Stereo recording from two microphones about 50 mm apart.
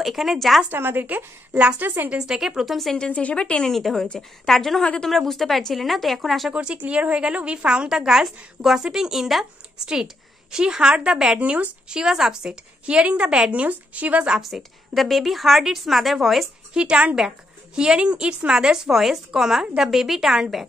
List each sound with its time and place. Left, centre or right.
0.0 s a woman's voice: centre
0.7 s a woman's voice: right
2.1 s a woman's voice: centre
3.1 s speech: left
3.6 s a woman's voice: centre
6.5 s a woman's voice: right
14.4 s a woman's voice: centre
16.7 s a woman's voice: right